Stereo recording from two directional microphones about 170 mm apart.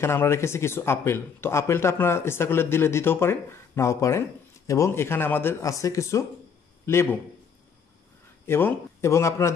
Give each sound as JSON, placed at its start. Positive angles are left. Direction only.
{"t": 0.0, "sound": "speech", "side_deg": 15}
{"t": 8.5, "sound": "speech", "side_deg": 15}